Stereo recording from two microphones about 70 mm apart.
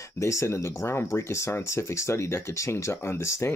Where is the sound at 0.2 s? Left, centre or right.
Left.